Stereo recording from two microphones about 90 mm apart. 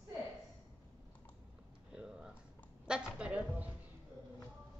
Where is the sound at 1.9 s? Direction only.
10° right (ahead or behind).